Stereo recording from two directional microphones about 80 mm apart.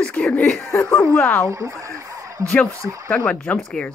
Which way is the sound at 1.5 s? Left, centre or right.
Right.